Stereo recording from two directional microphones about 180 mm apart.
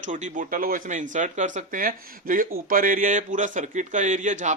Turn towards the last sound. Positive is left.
turn(degrees=-45)  # may be behind; listen again after turning